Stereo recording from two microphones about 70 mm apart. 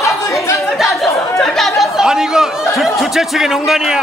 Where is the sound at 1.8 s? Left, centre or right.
Centre.